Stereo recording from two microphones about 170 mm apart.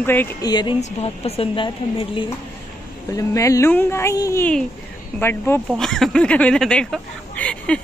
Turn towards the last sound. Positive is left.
turn(degrees=5)  # may be behind; listen again after turning